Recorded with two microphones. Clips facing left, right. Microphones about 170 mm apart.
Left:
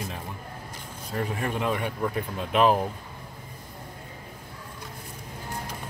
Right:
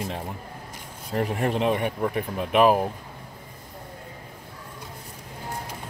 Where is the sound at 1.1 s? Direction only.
30° right (ahead or behind).